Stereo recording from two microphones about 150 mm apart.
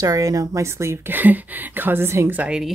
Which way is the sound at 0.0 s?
25° right (ahead or behind).